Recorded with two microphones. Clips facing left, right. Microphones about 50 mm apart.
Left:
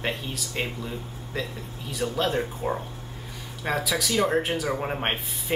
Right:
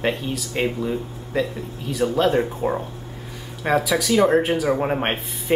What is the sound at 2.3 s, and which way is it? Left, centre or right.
Speech, centre.